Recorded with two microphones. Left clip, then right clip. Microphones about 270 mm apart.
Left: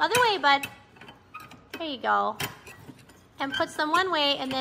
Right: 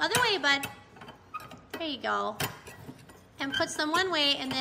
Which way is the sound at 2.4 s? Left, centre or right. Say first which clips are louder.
Even; right.